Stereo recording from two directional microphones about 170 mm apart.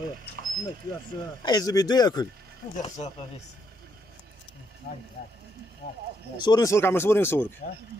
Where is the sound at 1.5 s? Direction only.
20° left (ahead or behind).